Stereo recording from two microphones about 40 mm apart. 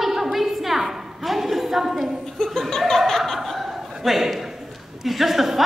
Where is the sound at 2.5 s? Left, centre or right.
Centre.